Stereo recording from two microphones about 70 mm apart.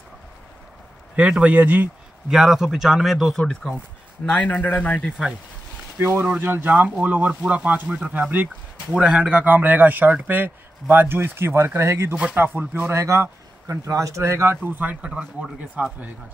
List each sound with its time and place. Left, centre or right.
1.1 s speech: centre
2.2 s a man's voice: centre
3.3 s speech: centre
4.3 s a man's voice: left
5.9 s speech: right
12.9 s speech: right
14.6 s speech: right
15.0 s speech: centre